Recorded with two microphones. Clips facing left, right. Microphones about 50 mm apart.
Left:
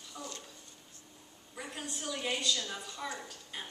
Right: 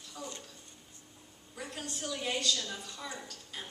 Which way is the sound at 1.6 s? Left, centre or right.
Centre.